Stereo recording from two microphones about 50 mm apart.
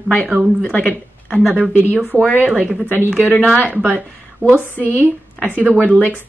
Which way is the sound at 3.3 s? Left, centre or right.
Centre.